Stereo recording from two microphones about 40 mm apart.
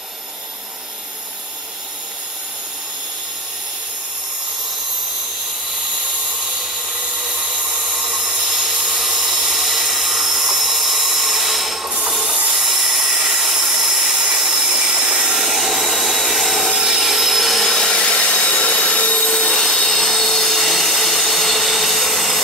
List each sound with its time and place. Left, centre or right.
6.9 s a sound: right
7.9 s wood: centre
12.4 s a sound: centre
15.3 s wood: centre
17.8 s wood: left
19.4 s wood: centre